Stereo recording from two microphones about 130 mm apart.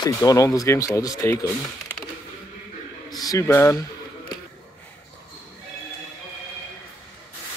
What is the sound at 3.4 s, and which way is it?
Speech, 20° left (ahead or behind).